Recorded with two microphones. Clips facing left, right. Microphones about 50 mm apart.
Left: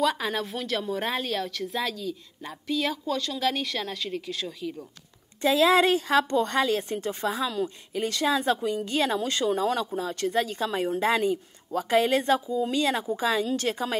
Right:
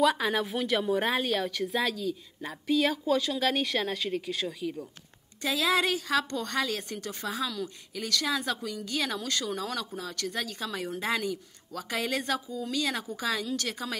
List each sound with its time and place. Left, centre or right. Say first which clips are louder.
0.0 s speech: right 1 dB; centre
5.4 s speech: left 7 dB; left